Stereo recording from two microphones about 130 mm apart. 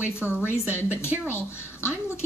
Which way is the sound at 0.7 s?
20° left (ahead or behind).